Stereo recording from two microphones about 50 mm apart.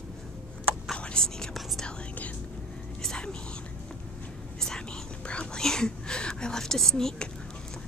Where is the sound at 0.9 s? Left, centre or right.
Centre.